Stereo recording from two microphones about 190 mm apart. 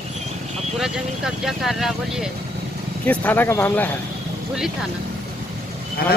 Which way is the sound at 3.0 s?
10° left (ahead or behind).